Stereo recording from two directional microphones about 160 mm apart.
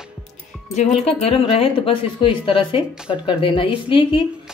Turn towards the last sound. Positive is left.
turn(degrees=35)  # may be behind; listen again after turning